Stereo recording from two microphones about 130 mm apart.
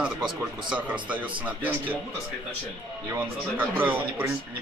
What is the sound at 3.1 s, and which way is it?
Speech, 15° right (ahead or behind).